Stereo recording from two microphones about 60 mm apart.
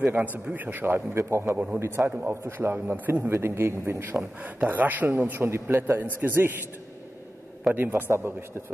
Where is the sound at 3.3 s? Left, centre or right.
Right.